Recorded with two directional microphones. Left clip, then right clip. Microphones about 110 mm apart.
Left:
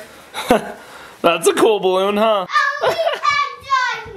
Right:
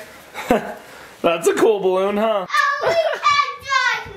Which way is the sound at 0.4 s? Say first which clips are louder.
Left 3 dB; 25° left (ahead or behind).